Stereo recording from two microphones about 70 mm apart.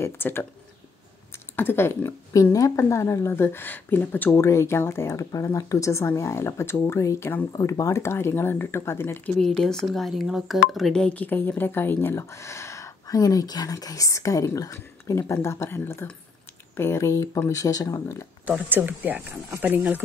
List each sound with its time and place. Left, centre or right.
0.0 s speech: left
1.6 s speech: left
2.5 s speech: left
2.8 s speech: left
4.3 s speech: left
7.5 s speech: left
8.0 s speech: left
9.4 s speech: centre
11.0 s speech: centre
11.2 s speech: left
18.7 s speech: right